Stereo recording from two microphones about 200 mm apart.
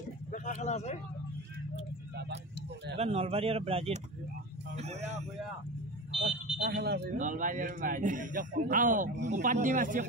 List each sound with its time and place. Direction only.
0.3 s a sound: 35° left (ahead or behind)
3.0 s a man's voice: 30° right (ahead or behind)
6.7 s speech: 55° right (ahead or behind)
7.2 s a man's voice: 40° right (ahead or behind)